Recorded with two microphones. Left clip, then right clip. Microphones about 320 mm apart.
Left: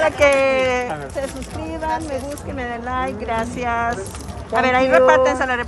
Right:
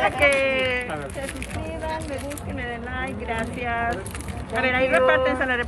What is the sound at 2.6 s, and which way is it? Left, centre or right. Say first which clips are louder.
Speech: left 8 dB; centre.